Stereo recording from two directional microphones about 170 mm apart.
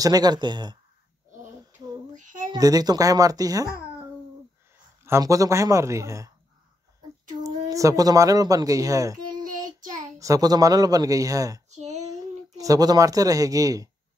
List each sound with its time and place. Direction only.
0.0 s speech: 20° right (ahead or behind)
2.1 s a sound: 50° right (ahead or behind)
2.5 s speech: 20° right (ahead or behind)
5.0 s speech: 15° right (ahead or behind)
7.4 s speech: 20° right (ahead or behind)
11.7 s a sound: 40° right (ahead or behind)
12.1 s speech: 20° right (ahead or behind)